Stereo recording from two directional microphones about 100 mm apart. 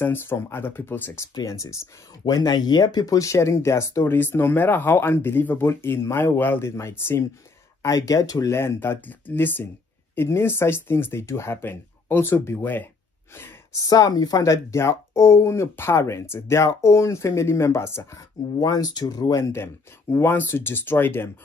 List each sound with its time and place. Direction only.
0.0 s speech: 20° left (ahead or behind)
13.7 s speech: 40° left (ahead or behind)
18.6 s speech: 40° left (ahead or behind); by 21.3 s 20° left (ahead or behind)